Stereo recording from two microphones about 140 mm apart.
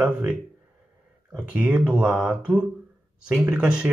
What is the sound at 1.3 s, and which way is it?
Speech, 15° right (ahead or behind).